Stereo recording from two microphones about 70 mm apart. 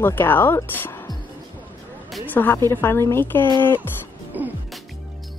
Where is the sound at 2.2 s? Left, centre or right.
Left.